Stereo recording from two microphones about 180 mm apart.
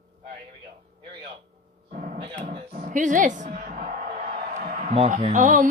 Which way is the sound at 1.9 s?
45° right (ahead or behind).